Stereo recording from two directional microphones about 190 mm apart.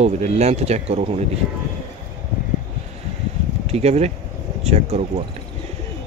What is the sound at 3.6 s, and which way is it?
A man's voice, 35° right (ahead or behind).